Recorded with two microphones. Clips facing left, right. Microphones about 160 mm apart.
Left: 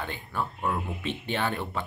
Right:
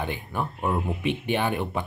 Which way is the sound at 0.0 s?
15° right (ahead or behind).